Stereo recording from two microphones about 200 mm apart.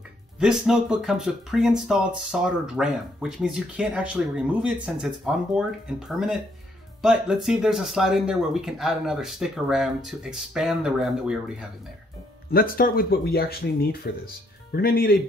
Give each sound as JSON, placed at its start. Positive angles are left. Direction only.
{"t": 0.4, "sound": "speech", "side_deg": -5}
{"t": 12.4, "sound": "speech", "side_deg": 45}